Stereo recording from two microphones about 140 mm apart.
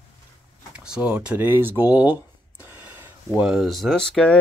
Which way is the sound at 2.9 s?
15° right (ahead or behind).